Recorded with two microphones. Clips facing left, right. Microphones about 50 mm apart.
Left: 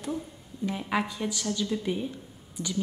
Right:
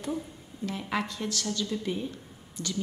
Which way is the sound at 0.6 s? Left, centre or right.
Centre.